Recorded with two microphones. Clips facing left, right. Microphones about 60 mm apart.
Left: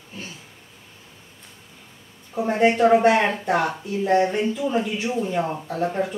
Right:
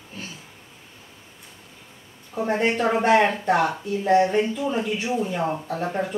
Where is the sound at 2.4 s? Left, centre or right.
Centre.